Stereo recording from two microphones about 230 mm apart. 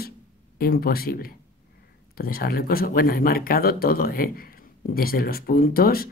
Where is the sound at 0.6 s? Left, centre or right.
Left.